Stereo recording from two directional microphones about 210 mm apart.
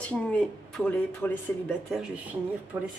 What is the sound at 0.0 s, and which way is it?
Speech, 5° left (ahead or behind).